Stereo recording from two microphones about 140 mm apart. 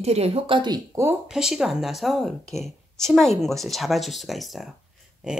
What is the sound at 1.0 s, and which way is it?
Speech, 20° right (ahead or behind).